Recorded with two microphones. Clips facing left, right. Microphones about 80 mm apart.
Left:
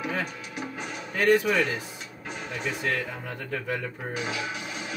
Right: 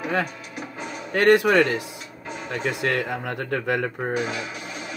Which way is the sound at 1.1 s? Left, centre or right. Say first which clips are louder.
Right 5 dB; right.